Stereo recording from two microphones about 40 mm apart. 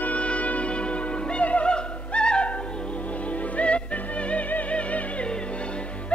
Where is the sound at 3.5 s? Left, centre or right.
Left.